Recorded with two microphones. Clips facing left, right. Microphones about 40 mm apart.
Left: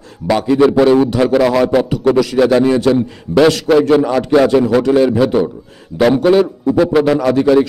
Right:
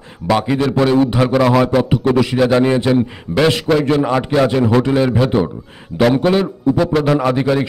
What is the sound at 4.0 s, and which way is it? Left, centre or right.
Speech, centre.